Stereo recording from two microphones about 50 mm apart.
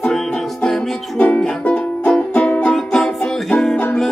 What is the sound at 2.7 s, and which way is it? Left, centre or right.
Music, centre.